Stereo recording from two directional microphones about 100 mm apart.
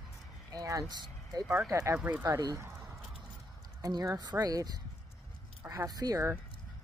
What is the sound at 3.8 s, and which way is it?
Speech, 40° right (ahead or behind).